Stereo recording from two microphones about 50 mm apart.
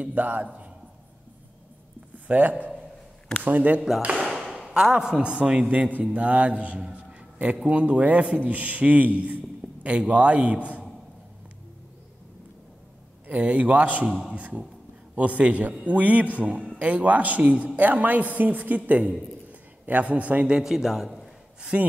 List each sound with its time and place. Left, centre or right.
0.0 s a man's voice: right
2.1 s a man's voice: right
4.2 s a sound: centre
4.9 s a man's voice: centre
6.9 s a sound: right
7.6 s a man's voice: right
13.3 s a man's voice: right
20.6 s a man's voice: centre
21.5 s a man's voice: right